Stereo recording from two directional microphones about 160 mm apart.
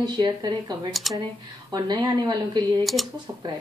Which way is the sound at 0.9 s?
Centre (ahead or behind).